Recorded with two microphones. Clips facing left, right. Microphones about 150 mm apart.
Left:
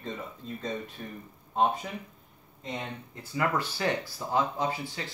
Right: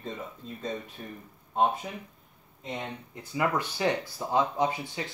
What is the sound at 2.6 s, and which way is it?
Speech, 5° right (ahead or behind).